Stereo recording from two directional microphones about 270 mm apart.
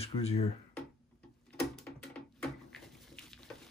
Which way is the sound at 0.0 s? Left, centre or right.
Left.